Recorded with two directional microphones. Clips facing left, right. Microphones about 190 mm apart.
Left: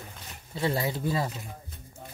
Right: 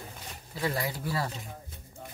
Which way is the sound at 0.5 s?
25° left (ahead or behind).